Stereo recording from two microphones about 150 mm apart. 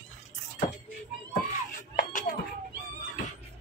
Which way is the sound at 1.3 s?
65° left (ahead or behind).